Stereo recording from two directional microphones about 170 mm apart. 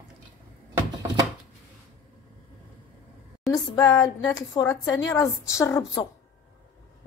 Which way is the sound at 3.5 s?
20° left (ahead or behind).